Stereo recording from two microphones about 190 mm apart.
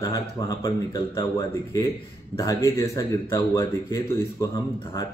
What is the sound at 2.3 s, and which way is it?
Speech, 15° left (ahead or behind).